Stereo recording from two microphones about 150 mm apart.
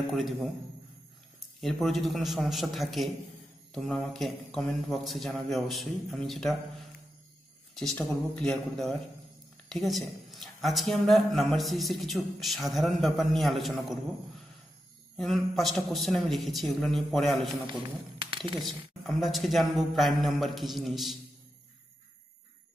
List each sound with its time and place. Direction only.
0.1 s a man's voice: centre (ahead or behind)
1.6 s a man's voice: centre (ahead or behind)
7.7 s a man's voice: 5° left (ahead or behind)
15.1 s a man's voice: centre (ahead or behind)
17.6 s speech: 35° right (ahead or behind)
18.6 s a man's voice: centre (ahead or behind)